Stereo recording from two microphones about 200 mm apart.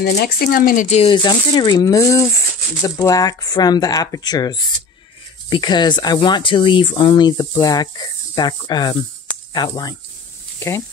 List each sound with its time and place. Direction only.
0.0 s speech: 50° left (ahead or behind); by 9.9 s 20° left (ahead or behind)